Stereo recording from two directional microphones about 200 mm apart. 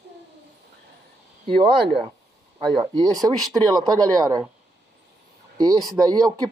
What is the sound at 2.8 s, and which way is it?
Speech, 20° right (ahead or behind).